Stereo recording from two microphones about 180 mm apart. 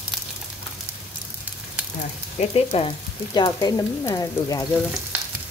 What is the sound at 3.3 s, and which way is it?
Speech, 20° left (ahead or behind).